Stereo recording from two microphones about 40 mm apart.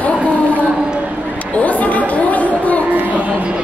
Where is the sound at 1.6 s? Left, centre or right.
Left.